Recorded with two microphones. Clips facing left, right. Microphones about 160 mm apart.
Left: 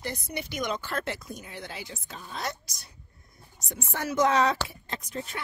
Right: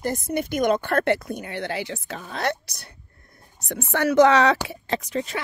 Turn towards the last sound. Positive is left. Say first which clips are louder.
# right 9 dB
turn(degrees=-90)